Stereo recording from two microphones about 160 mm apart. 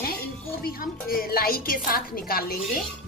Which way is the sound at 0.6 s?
70° left (ahead or behind).